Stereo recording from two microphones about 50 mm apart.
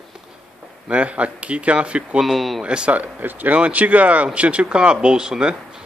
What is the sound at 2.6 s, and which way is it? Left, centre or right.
Speech, right.